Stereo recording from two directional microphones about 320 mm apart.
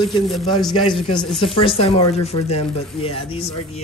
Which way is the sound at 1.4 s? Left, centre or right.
Centre.